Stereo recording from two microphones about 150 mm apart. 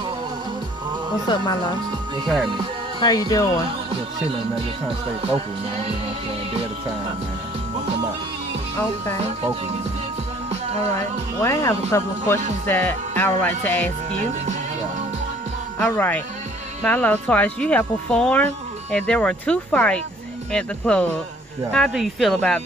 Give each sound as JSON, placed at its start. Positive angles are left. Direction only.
{"t": 1.2, "sound": "speech", "side_deg": 30}
{"t": 2.2, "sound": "speech", "side_deg": 0}
{"t": 3.0, "sound": "speech", "side_deg": 25}
{"t": 10.9, "sound": "speech", "side_deg": 15}
{"t": 14.2, "sound": "speech", "side_deg": -50}
{"t": 15.8, "sound": "speech", "side_deg": 15}